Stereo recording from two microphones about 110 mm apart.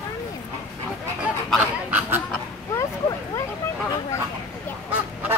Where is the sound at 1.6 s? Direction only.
15° right (ahead or behind).